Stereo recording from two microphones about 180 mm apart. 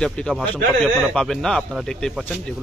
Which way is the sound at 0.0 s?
5° left (ahead or behind).